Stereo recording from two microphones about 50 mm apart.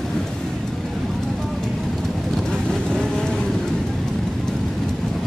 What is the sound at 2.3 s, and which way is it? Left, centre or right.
Vehicle, centre.